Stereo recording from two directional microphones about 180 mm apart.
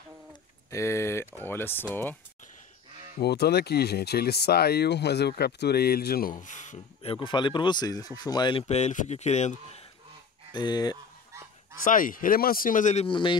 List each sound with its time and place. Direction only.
0.7 s speech: 15° left (ahead or behind)
3.2 s speech: 65° left (ahead or behind); by 9.6 s 40° left (ahead or behind)
10.5 s speech: 20° left (ahead or behind)
11.8 s speech: 50° left (ahead or behind); by 13.4 s 25° left (ahead or behind)